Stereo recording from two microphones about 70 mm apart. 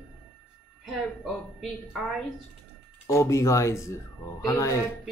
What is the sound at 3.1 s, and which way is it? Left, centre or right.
Speech, left.